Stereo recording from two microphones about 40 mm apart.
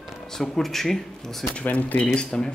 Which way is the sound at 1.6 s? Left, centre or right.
Left.